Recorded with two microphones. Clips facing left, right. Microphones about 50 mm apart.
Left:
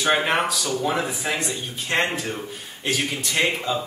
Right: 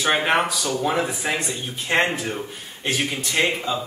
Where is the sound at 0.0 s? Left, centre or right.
Centre.